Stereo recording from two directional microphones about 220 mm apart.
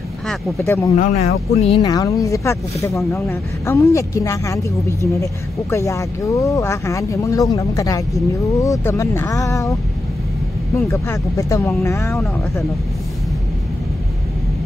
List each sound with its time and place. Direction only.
0.3 s speech: 10° left (ahead or behind)
0.9 s speech: 30° left (ahead or behind)
1.8 s speech: 15° left (ahead or behind)
10.9 s speech: 15° left (ahead or behind)